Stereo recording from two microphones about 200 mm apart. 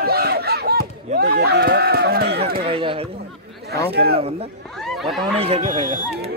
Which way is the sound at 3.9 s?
50° right (ahead or behind).